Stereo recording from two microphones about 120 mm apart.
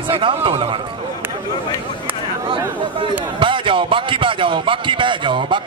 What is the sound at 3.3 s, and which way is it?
A man's voice, 45° right (ahead or behind).